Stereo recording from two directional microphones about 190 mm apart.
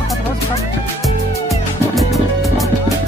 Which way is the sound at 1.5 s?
Centre (ahead or behind).